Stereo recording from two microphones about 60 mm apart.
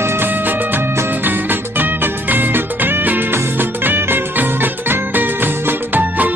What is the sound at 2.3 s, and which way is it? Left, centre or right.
Music, right.